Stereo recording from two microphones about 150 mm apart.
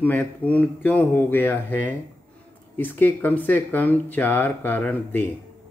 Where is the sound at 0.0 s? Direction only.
10° left (ahead or behind).